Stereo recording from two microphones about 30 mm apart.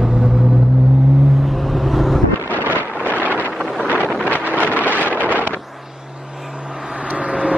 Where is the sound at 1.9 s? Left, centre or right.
Centre.